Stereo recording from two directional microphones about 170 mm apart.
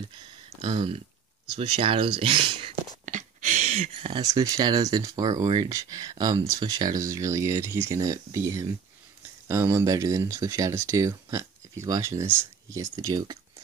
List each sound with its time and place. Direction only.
0.6 s speech: 35° right (ahead or behind)
3.1 s a sound: 45° right (ahead or behind)
4.2 s speech: 20° right (ahead or behind)